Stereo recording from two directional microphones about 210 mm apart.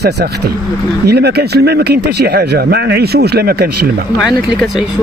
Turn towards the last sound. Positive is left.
turn(degrees=-50)  # may be behind; listen again after turning